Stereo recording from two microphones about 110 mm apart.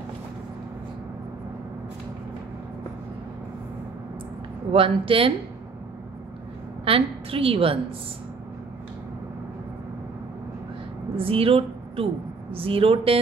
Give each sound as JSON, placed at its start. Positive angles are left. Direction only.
{"t": 4.7, "sound": "a woman's voice", "side_deg": -55}
{"t": 6.8, "sound": "a woman's voice", "side_deg": -55}
{"t": 11.1, "sound": "a woman's voice", "side_deg": -60}